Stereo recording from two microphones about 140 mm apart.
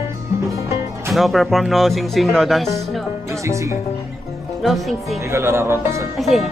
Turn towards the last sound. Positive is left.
turn(degrees=0)  # may be behind; listen again after turning